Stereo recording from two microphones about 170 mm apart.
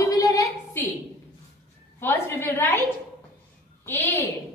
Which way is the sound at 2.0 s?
15° left (ahead or behind).